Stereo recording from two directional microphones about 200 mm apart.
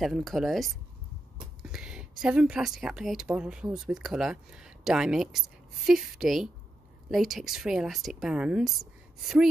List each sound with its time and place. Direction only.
0.0 s speech: centre (ahead or behind)